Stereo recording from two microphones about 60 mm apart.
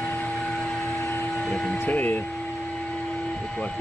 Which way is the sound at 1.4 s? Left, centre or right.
Centre.